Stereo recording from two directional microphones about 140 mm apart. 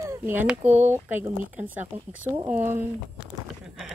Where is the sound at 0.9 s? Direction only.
15° right (ahead or behind).